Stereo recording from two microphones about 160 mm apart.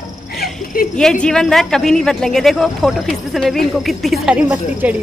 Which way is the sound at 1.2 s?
5° left (ahead or behind).